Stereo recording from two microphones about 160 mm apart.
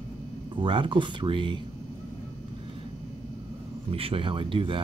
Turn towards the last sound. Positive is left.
turn(degrees=-30)  # may be behind; listen again after turning